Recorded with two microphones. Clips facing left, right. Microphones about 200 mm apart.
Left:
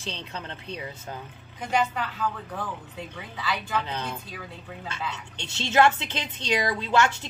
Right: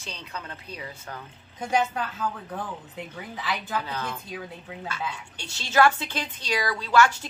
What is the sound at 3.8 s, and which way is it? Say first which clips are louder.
Speech: even; 25° left (ahead or behind).